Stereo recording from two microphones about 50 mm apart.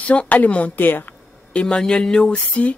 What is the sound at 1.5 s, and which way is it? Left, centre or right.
Speech, centre.